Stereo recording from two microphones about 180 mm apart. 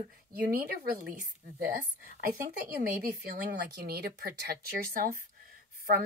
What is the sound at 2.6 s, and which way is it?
Speech, 60° right (ahead or behind).